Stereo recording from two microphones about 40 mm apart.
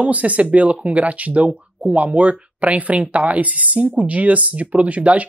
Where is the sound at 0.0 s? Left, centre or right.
Right.